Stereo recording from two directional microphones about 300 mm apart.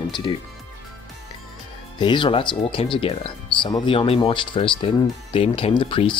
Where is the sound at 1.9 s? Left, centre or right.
Centre.